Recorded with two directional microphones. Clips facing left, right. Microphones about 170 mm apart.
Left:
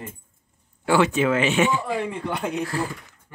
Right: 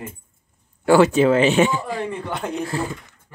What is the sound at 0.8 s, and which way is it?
Speech, 40° right (ahead or behind).